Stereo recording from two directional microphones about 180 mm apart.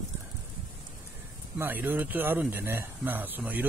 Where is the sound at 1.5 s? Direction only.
10° right (ahead or behind).